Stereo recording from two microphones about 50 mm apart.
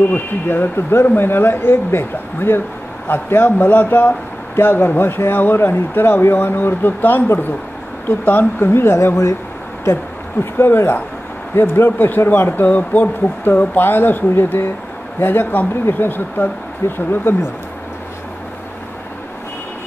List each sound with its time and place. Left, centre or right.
0.1 s speech: left
8.3 s speech: left
10.4 s speech: left